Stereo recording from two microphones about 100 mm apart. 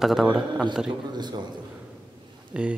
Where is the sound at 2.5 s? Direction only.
10° right (ahead or behind).